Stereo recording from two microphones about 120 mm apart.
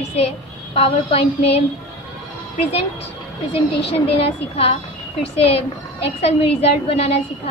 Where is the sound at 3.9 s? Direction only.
55° left (ahead or behind).